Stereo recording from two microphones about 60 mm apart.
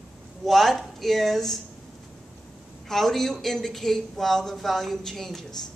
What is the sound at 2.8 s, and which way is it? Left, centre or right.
Speech, centre.